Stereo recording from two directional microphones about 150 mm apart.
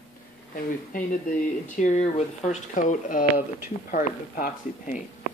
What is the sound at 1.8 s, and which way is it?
Speech, 50° left (ahead or behind).